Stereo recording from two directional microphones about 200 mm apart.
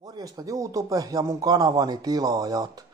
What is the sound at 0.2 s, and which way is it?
Speech, 15° right (ahead or behind).